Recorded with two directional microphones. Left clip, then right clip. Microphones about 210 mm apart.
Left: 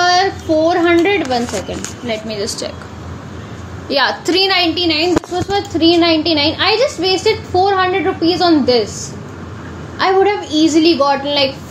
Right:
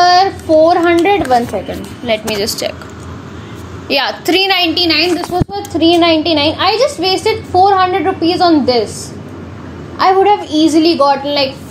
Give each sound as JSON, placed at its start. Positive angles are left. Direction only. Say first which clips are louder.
{"t": 0.0, "sound": "child singing", "louder": "right 4 dB", "side_deg": -20}
{"t": 1.0, "sound": "a sound", "louder": "right 4 dB", "side_deg": -20}
{"t": 2.1, "sound": "a woman's voice", "louder": "right 6 dB", "side_deg": -35}
{"t": 2.4, "sound": "a woman's voice", "louder": "right 4 dB", "side_deg": -5}
{"t": 3.9, "sound": "a woman's voice", "louder": "right 1 dB", "side_deg": 0}
{"t": 4.7, "sound": "a woman's voice", "louder": "right 3 dB", "side_deg": -40}
{"t": 5.5, "sound": "a child's voice", "louder": "even", "side_deg": -20}
{"t": 9.9, "sound": "a child's voice", "louder": "right 4 dB", "side_deg": -20}